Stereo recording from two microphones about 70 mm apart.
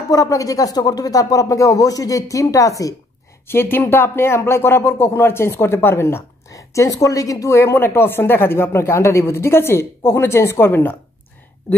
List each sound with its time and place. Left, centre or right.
0.1 s speech: left
3.4 s speech: left
6.5 s a woman's voice: left
7.5 s speech: left